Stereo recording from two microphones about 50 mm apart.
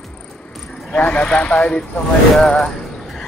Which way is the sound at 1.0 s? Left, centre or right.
Left.